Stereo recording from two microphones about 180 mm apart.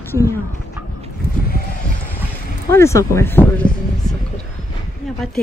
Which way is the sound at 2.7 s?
15° left (ahead or behind).